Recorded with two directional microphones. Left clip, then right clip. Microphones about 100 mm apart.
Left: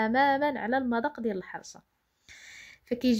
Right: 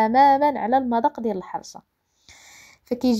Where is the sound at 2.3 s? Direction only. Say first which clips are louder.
Even; 30° right (ahead or behind).